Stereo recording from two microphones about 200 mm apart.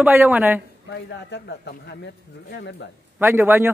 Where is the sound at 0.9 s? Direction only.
60° left (ahead or behind).